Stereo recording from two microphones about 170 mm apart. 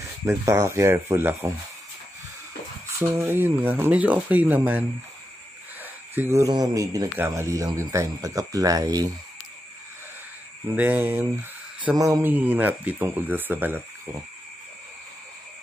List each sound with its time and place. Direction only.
0.2 s speech: 15° right (ahead or behind)
3.0 s speech: 15° right (ahead or behind)
10.8 s speech: 10° right (ahead or behind)